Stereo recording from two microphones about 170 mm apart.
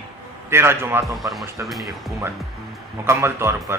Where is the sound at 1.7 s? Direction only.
Centre (ahead or behind).